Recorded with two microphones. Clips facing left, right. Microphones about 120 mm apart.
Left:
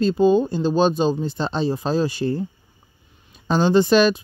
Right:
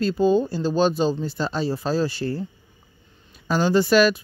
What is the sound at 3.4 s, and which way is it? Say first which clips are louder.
Speech: left 3 dB; 20° left (ahead or behind).